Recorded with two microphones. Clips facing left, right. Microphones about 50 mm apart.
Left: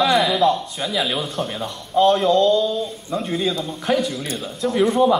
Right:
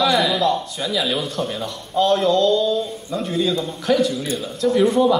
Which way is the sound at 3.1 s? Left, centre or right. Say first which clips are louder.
Right 1 dB; centre.